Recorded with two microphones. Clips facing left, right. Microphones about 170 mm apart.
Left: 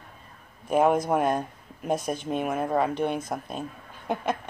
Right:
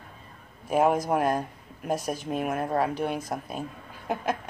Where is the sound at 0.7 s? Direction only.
5° right (ahead or behind).